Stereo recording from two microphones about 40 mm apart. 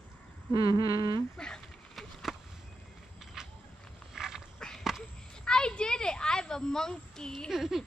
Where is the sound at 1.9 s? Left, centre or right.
Centre.